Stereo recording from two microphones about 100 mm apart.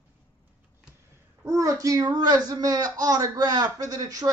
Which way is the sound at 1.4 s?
30° right (ahead or behind).